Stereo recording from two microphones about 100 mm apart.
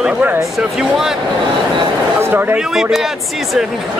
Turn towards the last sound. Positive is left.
turn(degrees=-5)  # may be behind; listen again after turning